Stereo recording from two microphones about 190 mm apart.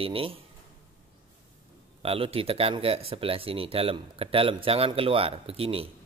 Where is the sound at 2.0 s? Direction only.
30° right (ahead or behind).